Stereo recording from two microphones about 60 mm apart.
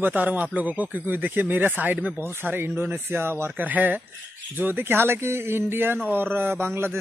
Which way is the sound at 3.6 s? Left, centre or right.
Right.